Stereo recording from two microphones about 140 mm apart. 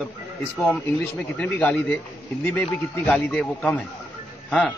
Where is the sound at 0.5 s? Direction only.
10° left (ahead or behind).